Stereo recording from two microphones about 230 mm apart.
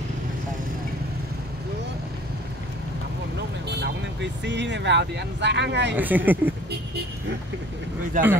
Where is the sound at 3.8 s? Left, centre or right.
Right.